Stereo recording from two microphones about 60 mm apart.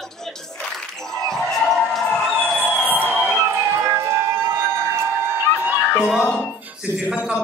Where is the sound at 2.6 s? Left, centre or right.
Right.